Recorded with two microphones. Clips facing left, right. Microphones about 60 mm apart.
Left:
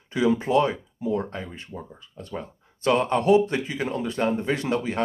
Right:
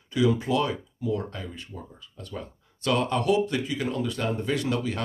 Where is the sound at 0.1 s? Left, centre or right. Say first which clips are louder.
Left 3 dB; left.